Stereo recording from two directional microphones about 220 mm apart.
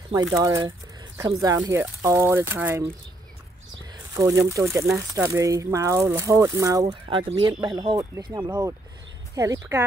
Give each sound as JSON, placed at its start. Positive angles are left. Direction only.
{"t": 0.4, "sound": "speech", "side_deg": -20}
{"t": 4.1, "sound": "speech", "side_deg": -15}